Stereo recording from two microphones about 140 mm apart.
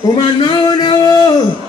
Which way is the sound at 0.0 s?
35° left (ahead or behind).